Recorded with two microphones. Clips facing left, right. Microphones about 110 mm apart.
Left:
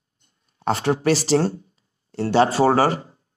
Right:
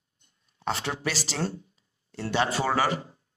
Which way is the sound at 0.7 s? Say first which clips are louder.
Left 11 dB; 45° left (ahead or behind).